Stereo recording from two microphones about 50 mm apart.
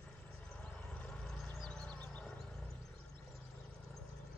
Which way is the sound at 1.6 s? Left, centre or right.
Centre.